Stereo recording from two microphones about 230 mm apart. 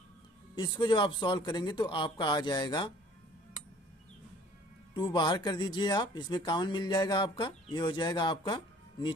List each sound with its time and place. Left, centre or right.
0.6 s speech: centre
4.9 s speech: centre